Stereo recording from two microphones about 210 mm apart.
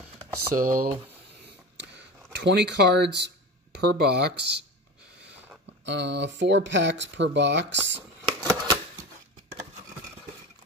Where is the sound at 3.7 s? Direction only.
50° right (ahead or behind).